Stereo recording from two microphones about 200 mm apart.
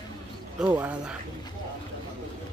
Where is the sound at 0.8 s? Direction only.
5° right (ahead or behind).